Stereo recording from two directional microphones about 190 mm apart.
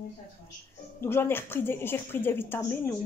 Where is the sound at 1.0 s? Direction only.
10° left (ahead or behind).